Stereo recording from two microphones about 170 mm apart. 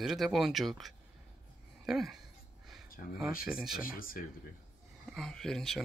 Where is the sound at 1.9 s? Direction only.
Centre (ahead or behind).